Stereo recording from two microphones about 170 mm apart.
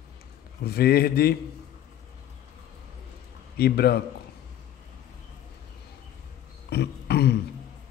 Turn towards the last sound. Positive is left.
turn(degrees=75)  # may be behind; listen again after turning